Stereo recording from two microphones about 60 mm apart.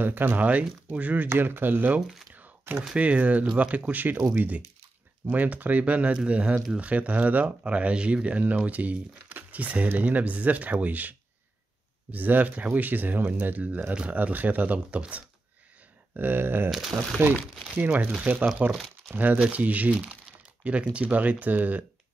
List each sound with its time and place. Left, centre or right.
0.0 s speech: right
2.0 s speech: centre
2.3 s a sound: right
3.0 s speech: right
5.2 s speech: right
16.1 s speech: right
19.3 s speech: right